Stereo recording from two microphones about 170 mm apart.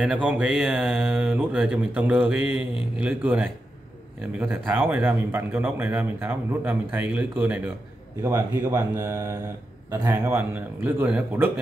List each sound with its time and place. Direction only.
0.0 s speech: 5° right (ahead or behind)